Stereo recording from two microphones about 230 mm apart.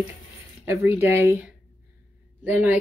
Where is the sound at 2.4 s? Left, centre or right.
Centre.